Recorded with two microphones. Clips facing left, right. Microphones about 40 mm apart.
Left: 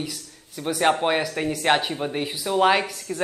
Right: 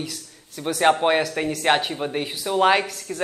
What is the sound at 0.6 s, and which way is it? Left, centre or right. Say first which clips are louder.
A man's voice: right 2 dB; centre.